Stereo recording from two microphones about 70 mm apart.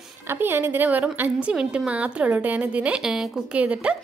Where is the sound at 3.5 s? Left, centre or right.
Centre.